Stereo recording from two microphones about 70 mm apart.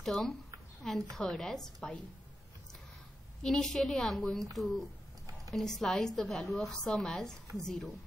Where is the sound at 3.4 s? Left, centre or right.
Centre.